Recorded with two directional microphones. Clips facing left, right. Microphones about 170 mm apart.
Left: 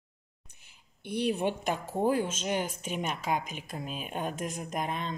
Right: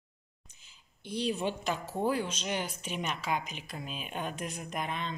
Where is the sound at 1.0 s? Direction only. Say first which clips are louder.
Left 3 dB; 60° left (ahead or behind).